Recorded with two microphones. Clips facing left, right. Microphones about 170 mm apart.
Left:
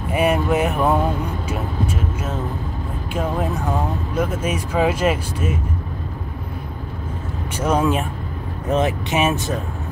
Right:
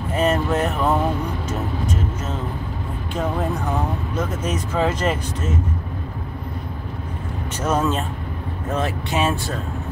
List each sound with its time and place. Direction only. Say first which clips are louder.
0.1 s speech: left 2 dB; 10° left (ahead or behind)
7.5 s speech: left 2 dB; 10° left (ahead or behind)